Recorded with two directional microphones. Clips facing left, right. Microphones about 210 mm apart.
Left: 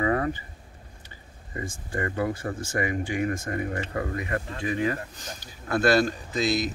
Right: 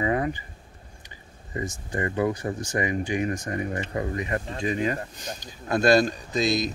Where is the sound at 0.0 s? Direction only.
20° right (ahead or behind).